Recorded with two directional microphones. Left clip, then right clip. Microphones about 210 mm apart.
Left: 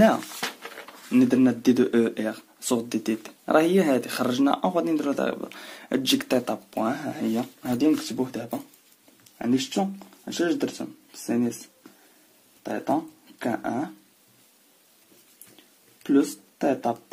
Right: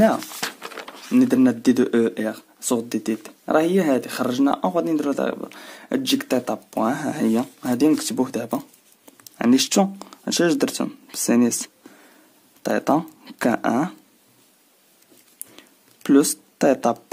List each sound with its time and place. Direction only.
0.4 s a sound: 55° right (ahead or behind)
1.1 s speech: 25° right (ahead or behind)
9.2 s speech: 45° right (ahead or behind)
12.6 s speech: 45° right (ahead or behind)
16.0 s speech: 45° right (ahead or behind)